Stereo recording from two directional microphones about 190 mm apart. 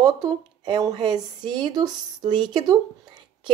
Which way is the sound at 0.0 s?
20° right (ahead or behind).